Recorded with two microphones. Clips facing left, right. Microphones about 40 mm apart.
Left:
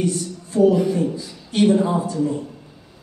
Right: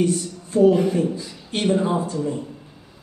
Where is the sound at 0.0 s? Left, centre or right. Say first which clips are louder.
Right 2 dB; right.